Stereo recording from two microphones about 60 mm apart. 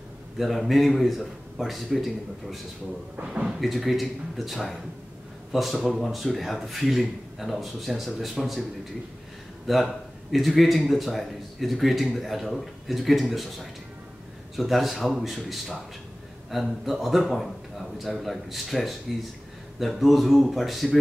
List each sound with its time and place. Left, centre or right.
0.4 s a man's voice: centre
3.3 s a man's voice: centre
9.7 s a man's voice: centre